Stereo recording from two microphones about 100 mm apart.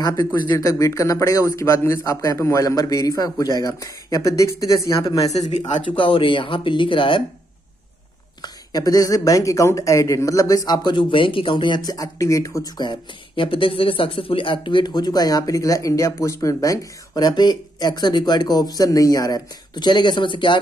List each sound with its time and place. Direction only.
0.0 s a man's voice: 35° left (ahead or behind)
5.6 s speech: 55° left (ahead or behind)
8.4 s a man's voice: 40° left (ahead or behind)
10.8 s speech: 50° left (ahead or behind); by 12.6 s 30° left (ahead or behind)
12.7 s speech: 50° left (ahead or behind)